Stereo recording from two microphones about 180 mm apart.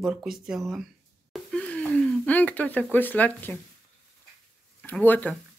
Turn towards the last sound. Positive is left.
turn(degrees=10)  # may be behind; listen again after turning